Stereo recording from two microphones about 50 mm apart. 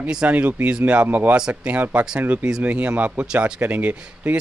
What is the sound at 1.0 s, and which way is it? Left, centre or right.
A man's voice, right.